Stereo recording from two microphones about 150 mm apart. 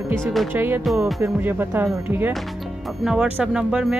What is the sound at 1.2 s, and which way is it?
Speech, 15° right (ahead or behind).